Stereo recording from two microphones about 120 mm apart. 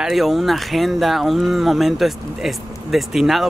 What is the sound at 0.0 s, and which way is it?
Speech, centre (ahead or behind).